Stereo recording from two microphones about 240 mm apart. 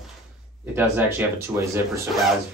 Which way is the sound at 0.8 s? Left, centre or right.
Centre.